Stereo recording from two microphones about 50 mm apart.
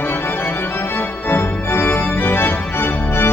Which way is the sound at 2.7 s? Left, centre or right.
Left.